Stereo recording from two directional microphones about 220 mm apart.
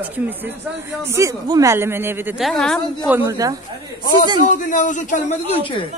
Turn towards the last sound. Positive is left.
turn(degrees=25)  # may be behind; listen again after turning